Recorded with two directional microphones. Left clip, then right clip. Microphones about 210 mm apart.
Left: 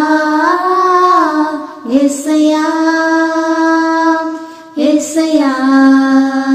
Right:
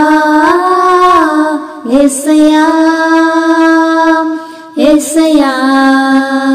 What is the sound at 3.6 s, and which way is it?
Mantra, 25° right (ahead or behind).